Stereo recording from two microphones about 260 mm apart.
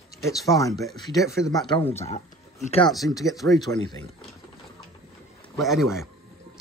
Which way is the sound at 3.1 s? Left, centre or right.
Centre.